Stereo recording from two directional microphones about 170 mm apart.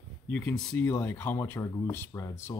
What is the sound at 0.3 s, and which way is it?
Speech, 5° left (ahead or behind).